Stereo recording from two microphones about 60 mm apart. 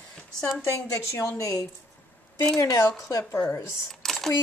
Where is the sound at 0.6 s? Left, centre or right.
Left.